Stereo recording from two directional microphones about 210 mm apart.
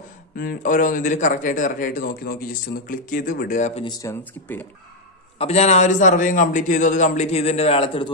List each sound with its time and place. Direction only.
0.4 s a man's voice: 40° left (ahead or behind)
3.8 s speech: 15° left (ahead or behind)
5.4 s a man's voice: 30° left (ahead or behind)